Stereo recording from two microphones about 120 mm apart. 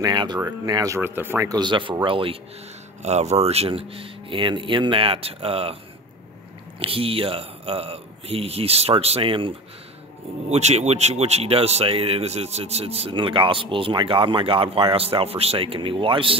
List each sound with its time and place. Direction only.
0.0 s speech: 40° right (ahead or behind)
0.9 s speech: 15° right (ahead or behind)
1.5 s speech: 40° right (ahead or behind)
3.0 s speech: 70° right (ahead or behind); by 5.8 s 55° right (ahead or behind)
6.8 s speech: 50° right (ahead or behind)
10.5 s speech: 70° right (ahead or behind); by 16.3 s 45° right (ahead or behind)